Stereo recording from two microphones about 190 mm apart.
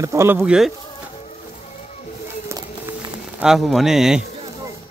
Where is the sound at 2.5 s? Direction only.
15° right (ahead or behind).